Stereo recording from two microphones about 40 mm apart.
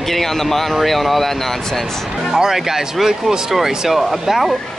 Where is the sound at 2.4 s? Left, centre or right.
Centre.